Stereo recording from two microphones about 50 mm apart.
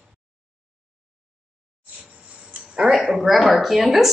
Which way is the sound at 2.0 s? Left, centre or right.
Right.